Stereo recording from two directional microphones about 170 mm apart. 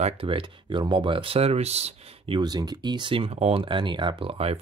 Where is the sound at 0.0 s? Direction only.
30° right (ahead or behind).